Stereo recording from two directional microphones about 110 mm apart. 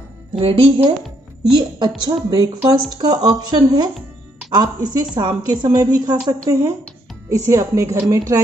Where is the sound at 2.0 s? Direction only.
35° right (ahead or behind).